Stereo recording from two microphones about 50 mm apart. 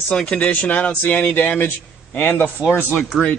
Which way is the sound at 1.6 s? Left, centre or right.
Left.